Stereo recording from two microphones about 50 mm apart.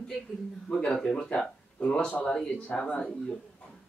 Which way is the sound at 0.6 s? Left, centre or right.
Centre.